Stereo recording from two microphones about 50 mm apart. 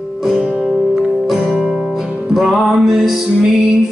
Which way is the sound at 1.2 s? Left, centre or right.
Centre.